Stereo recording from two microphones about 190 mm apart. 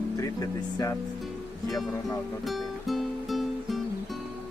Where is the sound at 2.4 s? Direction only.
Centre (ahead or behind).